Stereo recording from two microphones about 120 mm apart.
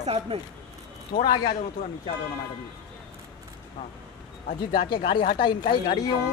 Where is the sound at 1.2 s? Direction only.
35° left (ahead or behind).